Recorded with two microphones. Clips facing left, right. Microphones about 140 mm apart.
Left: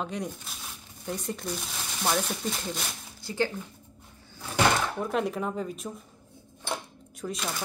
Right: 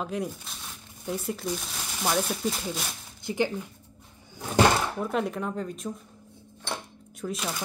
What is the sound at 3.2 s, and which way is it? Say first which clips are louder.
Speech: right 2 dB; 15° right (ahead or behind).